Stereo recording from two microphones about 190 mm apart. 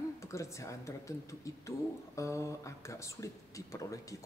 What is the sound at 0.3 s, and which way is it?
Speech, 15° left (ahead or behind).